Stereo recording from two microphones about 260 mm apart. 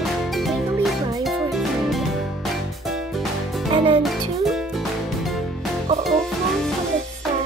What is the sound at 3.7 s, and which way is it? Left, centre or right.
Music, centre.